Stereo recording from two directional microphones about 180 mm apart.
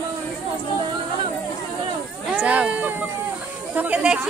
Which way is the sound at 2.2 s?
5° right (ahead or behind).